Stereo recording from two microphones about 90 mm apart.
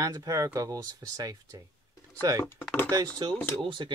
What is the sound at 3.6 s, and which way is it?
Speech, 70° right (ahead or behind).